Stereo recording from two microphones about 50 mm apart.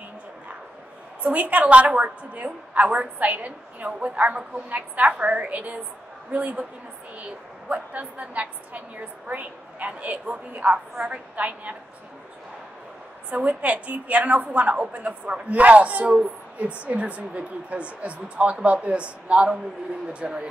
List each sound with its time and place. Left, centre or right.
1.2 s a woman's voice: right
13.3 s a woman's voice: right